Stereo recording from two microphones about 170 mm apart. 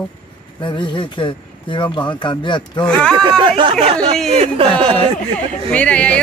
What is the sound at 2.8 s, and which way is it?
Speech, 5° left (ahead or behind).